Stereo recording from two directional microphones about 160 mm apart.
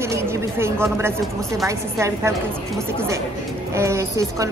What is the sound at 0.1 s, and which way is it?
Speech, 15° right (ahead or behind).